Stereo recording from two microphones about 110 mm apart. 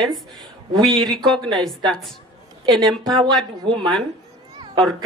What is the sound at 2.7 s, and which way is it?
Speech, centre (ahead or behind).